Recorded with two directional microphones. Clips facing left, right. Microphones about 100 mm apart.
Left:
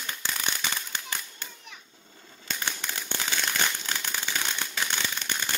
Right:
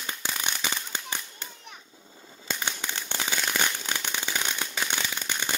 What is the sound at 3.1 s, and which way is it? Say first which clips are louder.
Firecracker: right 1 dB; 15° right (ahead or behind).